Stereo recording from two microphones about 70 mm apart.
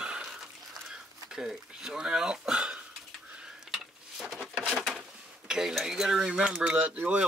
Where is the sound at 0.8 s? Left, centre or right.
Centre.